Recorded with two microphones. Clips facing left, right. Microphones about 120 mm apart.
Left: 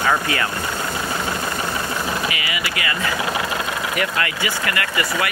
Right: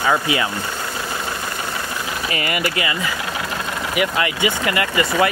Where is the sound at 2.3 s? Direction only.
45° right (ahead or behind).